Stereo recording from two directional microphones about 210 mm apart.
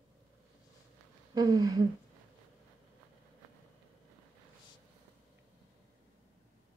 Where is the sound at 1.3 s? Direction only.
15° right (ahead or behind).